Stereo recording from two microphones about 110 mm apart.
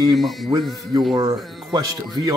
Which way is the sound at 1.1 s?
40° right (ahead or behind).